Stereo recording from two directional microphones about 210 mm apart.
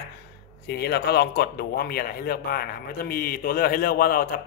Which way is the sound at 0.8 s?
50° left (ahead or behind).